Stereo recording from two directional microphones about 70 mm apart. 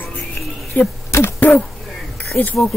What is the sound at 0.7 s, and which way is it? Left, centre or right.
Speech, left.